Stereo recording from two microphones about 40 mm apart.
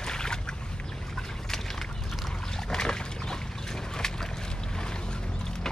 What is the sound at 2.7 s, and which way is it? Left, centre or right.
Boat, centre.